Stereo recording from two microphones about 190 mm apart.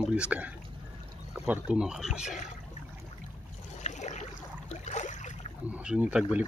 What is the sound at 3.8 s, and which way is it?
Boat, 40° left (ahead or behind).